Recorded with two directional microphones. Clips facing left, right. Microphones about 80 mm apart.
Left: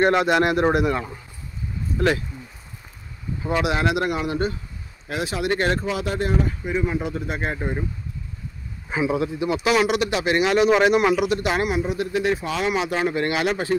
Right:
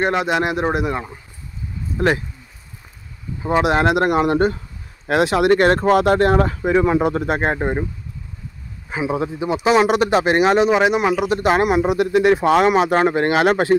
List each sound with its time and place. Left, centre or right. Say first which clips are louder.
0.0 s speech: left 1 dB; centre
3.4 s speech: right 6 dB; right
5.0 s speech: right 10 dB; right
9.1 s speech: right 5 dB; right
10.7 s speech: right 1 dB; centre
11.2 s speech: right 5 dB; right
11.6 s speech: right 7 dB; right